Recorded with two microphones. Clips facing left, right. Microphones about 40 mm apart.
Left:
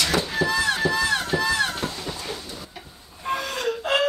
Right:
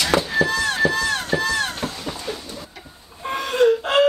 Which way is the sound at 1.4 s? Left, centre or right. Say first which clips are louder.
Even; centre.